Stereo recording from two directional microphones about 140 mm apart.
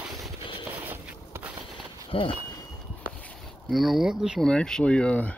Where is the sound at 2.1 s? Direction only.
40° left (ahead or behind).